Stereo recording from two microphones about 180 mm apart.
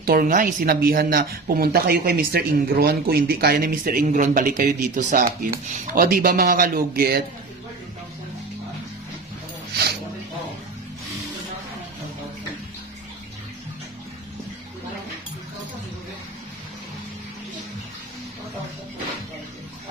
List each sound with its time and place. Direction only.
0.0 s speech: 55° right (ahead or behind)